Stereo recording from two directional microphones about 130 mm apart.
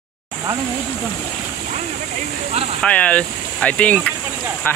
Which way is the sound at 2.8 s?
10° left (ahead or behind).